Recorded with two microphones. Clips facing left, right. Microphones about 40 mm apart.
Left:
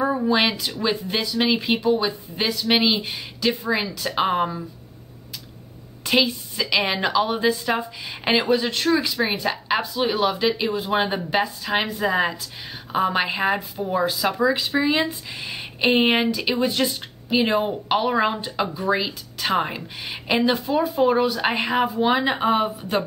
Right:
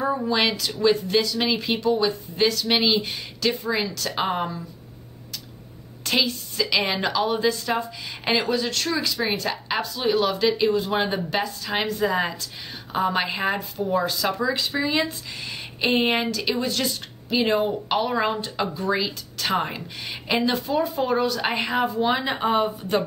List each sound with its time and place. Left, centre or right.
0.0 s a sound: centre
0.4 s speech: centre
6.0 s speech: centre